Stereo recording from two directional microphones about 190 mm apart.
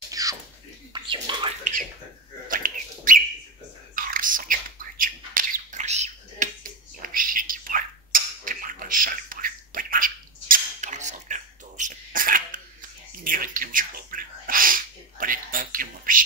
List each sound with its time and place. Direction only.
0.1 s a sound: 20° right (ahead or behind)
0.9 s bathtub: 25° right (ahead or behind)
1.6 s speech: 45° right (ahead or behind)
2.4 s bird: 45° right (ahead or behind)
3.9 s squawk: 45° right (ahead or behind)
13.2 s a sound: 45° right (ahead or behind)